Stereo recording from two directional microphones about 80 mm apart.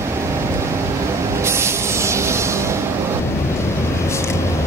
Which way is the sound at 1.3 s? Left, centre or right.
Right.